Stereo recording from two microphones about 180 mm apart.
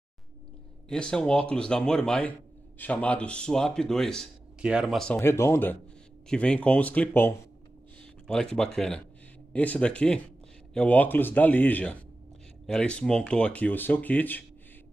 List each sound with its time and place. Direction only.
0.8 s a man's voice: 5° left (ahead or behind)